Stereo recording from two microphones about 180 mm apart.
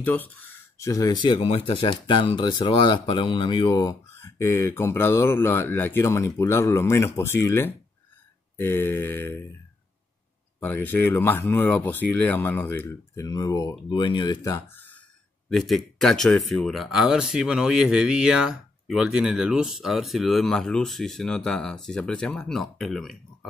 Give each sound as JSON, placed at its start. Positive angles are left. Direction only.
{"t": 0.0, "sound": "speech", "side_deg": 10}
{"t": 10.6, "sound": "speech", "side_deg": 10}
{"t": 14.5, "sound": "a sound", "side_deg": 10}
{"t": 15.5, "sound": "speech", "side_deg": 0}